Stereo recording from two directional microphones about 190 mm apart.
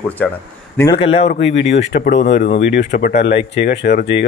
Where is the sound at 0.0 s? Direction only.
10° left (ahead or behind).